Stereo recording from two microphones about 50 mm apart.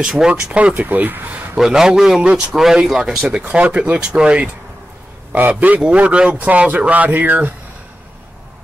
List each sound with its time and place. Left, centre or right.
0.0 s a man's voice: centre
0.4 s speech: right
0.8 s speech: right
1.6 s a man's voice: centre
3.4 s speech: right
5.5 s speech: right